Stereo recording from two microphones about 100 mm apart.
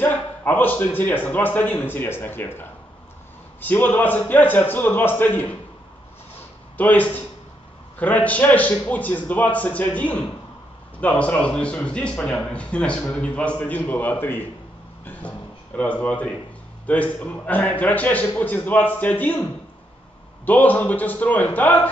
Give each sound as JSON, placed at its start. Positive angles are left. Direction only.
{"t": 0.0, "sound": "a man's voice", "side_deg": 20}
{"t": 6.8, "sound": "a man's voice", "side_deg": 15}
{"t": 20.4, "sound": "a man's voice", "side_deg": 15}